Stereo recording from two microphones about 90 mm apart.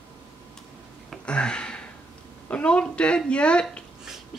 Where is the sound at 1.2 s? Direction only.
10° left (ahead or behind).